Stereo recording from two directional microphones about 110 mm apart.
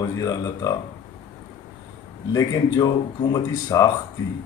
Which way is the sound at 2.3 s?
35° left (ahead or behind).